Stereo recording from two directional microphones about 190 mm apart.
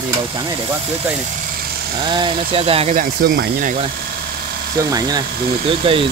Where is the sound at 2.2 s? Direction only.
30° right (ahead or behind).